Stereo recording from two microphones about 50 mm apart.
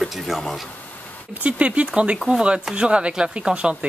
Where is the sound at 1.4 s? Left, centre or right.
Right.